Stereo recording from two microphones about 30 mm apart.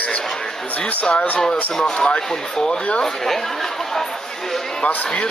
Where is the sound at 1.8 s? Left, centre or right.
Left.